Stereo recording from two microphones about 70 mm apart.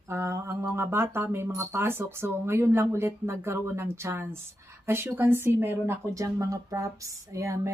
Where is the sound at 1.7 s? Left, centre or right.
Right.